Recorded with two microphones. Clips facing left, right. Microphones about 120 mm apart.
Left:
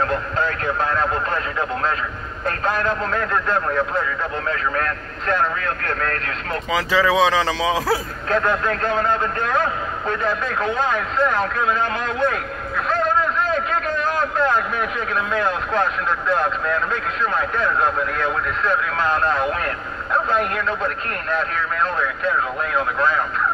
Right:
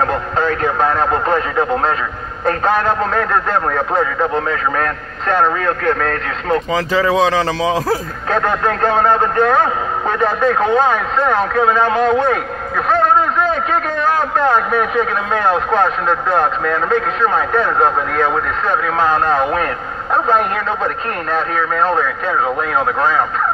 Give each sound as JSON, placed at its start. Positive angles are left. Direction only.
{"t": 0.0, "sound": "speech", "side_deg": -80}
{"t": 3.2, "sound": "speech", "side_deg": -80}
{"t": 6.9, "sound": "a man's voice", "side_deg": -40}
{"t": 8.8, "sound": "a man's voice", "side_deg": -80}
{"t": 12.7, "sound": "a sound", "side_deg": -65}
{"t": 14.3, "sound": "speech", "side_deg": -70}
{"t": 21.8, "sound": "speech", "side_deg": -70}